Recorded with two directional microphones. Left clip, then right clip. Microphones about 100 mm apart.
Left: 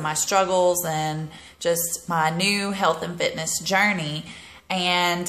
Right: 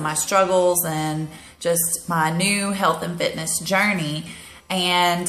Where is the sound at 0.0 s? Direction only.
20° left (ahead or behind).